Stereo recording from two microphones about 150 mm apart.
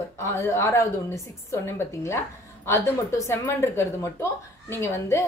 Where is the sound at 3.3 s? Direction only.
15° left (ahead or behind).